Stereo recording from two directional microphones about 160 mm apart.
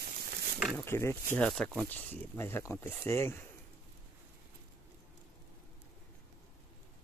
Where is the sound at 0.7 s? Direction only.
15° left (ahead or behind).